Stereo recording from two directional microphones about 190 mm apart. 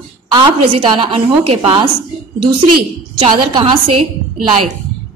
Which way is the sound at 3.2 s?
25° right (ahead or behind).